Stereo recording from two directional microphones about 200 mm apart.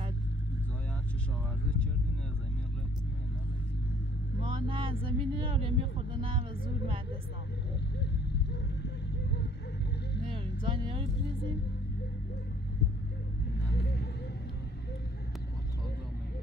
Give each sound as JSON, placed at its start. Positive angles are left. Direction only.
{"t": 4.4, "sound": "speech", "side_deg": -25}
{"t": 10.2, "sound": "vehicle", "side_deg": -25}
{"t": 13.7, "sound": "vehicle", "side_deg": 55}